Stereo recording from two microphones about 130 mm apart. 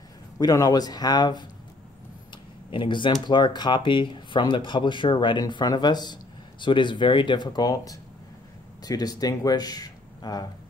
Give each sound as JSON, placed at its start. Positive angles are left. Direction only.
{"t": 0.4, "sound": "speech", "side_deg": 30}